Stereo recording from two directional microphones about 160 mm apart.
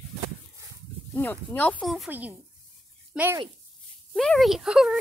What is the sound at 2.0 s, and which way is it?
Speech, 10° right (ahead or behind).